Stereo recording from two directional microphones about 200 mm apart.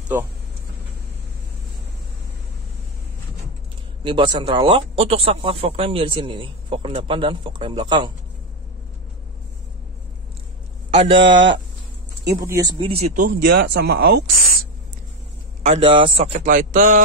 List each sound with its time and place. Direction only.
4.0 s speech: 25° right (ahead or behind)
11.0 s speech: 25° right (ahead or behind)
11.3 s speech: 65° right (ahead or behind)
12.4 s speech: 15° right (ahead or behind); by 13.4 s 40° right (ahead or behind)
13.7 s speech: 50° right (ahead or behind)
15.6 s a man's voice: 30° right (ahead or behind)